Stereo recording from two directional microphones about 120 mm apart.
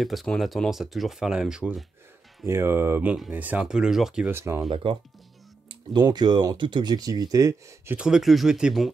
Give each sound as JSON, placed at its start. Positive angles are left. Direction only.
{"t": 0.0, "sound": "speech", "side_deg": 0}
{"t": 2.4, "sound": "speech", "side_deg": -20}
{"t": 4.3, "sound": "speech", "side_deg": -20}
{"t": 4.6, "sound": "speech", "side_deg": -45}
{"t": 5.7, "sound": "speech", "side_deg": -35}
{"t": 8.0, "sound": "speech", "side_deg": -5}